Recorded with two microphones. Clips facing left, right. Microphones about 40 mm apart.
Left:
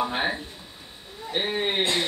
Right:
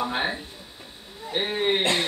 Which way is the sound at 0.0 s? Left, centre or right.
Centre.